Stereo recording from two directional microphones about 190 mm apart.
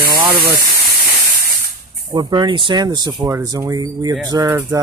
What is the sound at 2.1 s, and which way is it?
Speech, 25° right (ahead or behind).